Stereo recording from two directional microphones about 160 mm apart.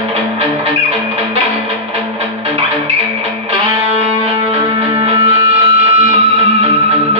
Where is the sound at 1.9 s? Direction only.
40° right (ahead or behind).